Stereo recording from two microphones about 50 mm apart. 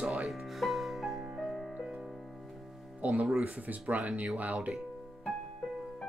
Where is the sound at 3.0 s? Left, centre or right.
Right.